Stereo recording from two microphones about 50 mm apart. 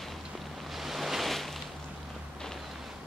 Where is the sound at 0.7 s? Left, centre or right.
Centre.